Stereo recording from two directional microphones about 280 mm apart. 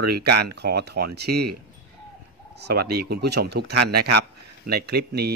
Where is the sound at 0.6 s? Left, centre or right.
Right.